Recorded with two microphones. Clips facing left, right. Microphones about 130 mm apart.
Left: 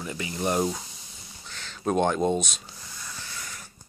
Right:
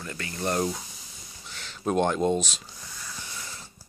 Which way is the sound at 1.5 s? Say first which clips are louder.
Left 1 dB; centre (ahead or behind).